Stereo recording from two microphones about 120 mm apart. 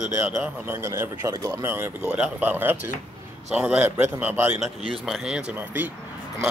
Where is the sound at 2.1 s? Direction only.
10° right (ahead or behind).